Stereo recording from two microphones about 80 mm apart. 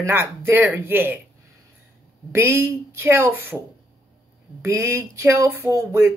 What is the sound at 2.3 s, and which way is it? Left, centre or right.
A woman's voice, right.